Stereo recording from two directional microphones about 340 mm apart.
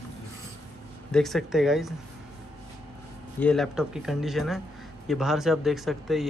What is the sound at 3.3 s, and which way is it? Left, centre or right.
Speech, centre.